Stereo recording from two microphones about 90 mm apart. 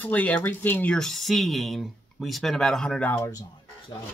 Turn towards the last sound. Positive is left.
turn(degrees=40)  # may be behind; listen again after turning